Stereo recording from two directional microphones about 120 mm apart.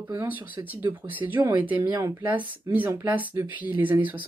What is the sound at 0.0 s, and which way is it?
Speech, 15° right (ahead or behind).